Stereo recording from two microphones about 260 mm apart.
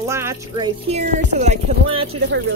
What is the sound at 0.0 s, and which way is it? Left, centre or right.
Speech, centre.